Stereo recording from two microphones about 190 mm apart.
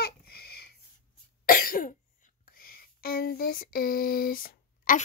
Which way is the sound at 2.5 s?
50° left (ahead or behind).